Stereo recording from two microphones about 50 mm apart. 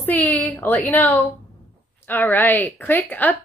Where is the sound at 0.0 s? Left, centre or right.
Left.